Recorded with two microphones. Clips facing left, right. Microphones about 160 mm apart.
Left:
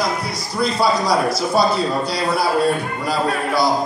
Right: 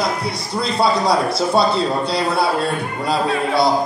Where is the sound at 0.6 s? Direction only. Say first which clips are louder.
Right 1 dB; 25° right (ahead or behind).